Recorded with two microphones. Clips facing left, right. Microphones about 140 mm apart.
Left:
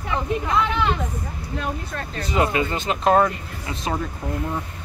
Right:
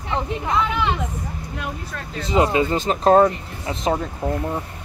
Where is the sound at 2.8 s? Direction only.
35° right (ahead or behind).